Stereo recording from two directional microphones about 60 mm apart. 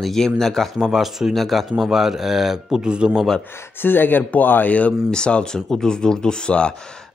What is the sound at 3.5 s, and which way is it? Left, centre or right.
Speech, left.